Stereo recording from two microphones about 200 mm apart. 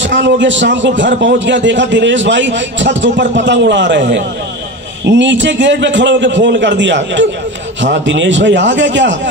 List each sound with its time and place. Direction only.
0.0 s a man's voice: 65° right (ahead or behind)